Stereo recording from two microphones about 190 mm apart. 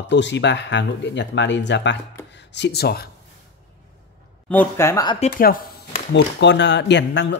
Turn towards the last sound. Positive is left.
turn(degrees=65)  # may be behind; listen again after turning